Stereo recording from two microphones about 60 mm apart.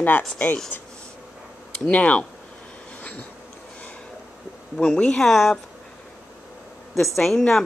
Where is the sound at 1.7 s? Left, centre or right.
Centre.